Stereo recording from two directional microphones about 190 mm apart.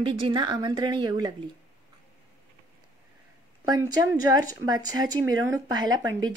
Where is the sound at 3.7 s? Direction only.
15° right (ahead or behind).